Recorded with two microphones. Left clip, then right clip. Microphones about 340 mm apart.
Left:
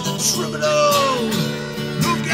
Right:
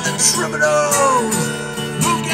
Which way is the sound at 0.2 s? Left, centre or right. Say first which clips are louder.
Right 5 dB; right.